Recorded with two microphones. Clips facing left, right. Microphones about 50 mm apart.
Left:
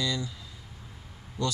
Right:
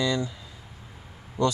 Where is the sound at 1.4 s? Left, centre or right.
Right.